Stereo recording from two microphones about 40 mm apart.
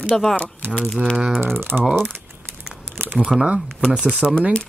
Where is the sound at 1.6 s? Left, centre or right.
Right.